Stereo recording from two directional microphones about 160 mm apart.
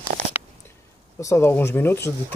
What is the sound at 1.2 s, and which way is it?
Speech, 15° left (ahead or behind).